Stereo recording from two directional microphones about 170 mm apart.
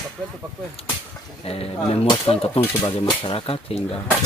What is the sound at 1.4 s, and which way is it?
Speech, 35° left (ahead or behind).